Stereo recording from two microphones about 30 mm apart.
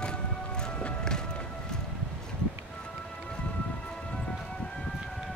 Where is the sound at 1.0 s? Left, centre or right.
Left.